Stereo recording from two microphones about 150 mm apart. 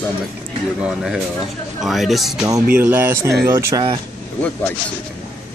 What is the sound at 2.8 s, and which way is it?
Speech, 15° right (ahead or behind).